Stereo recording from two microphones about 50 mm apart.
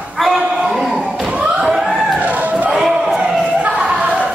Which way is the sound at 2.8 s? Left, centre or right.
Centre.